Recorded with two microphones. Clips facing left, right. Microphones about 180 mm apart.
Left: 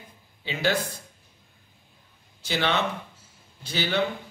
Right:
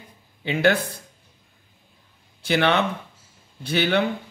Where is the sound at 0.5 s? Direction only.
55° right (ahead or behind).